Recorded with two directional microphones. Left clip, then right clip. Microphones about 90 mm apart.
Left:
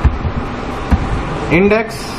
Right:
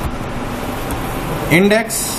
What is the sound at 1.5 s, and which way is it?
Speech, 20° right (ahead or behind).